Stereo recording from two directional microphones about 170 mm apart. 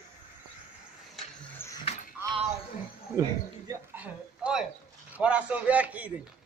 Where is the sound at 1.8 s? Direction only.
40° left (ahead or behind).